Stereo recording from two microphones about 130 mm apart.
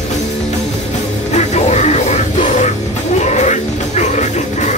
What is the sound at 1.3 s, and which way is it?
Music, 60° left (ahead or behind).